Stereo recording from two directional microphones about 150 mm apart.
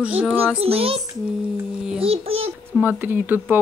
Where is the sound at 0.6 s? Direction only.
40° right (ahead or behind).